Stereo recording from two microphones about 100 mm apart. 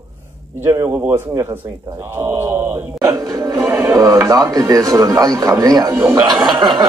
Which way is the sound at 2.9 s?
35° right (ahead or behind).